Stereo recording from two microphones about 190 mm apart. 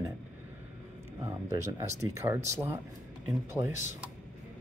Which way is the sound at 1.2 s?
15° right (ahead or behind).